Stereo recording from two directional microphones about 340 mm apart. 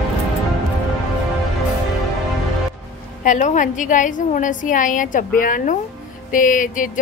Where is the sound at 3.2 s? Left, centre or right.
Left.